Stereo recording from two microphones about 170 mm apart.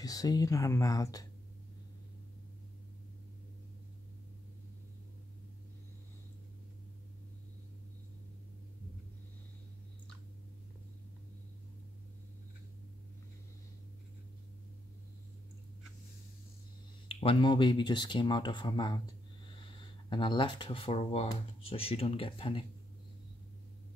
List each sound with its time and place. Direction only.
0.0 s speech: 20° left (ahead or behind)
17.1 s speech: 35° left (ahead or behind)